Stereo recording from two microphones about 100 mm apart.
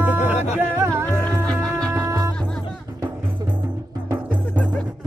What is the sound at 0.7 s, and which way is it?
Music, 30° right (ahead or behind).